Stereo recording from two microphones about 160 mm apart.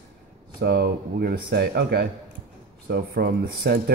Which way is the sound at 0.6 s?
80° right.